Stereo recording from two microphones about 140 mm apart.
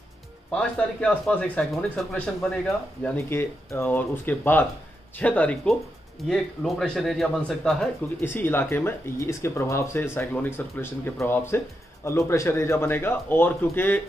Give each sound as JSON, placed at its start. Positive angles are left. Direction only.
{"t": 0.5, "sound": "speech", "side_deg": 5}
{"t": 8.2, "sound": "speech", "side_deg": 15}